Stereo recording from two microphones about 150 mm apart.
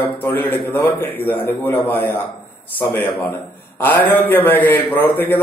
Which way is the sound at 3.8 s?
15° left (ahead or behind).